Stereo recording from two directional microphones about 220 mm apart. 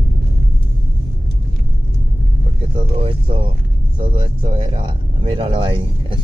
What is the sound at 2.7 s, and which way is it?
Speech, 25° right (ahead or behind).